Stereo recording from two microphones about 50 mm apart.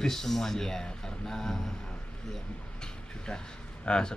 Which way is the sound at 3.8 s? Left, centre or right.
Centre.